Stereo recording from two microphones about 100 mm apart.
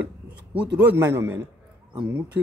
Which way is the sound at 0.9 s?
25° right (ahead or behind).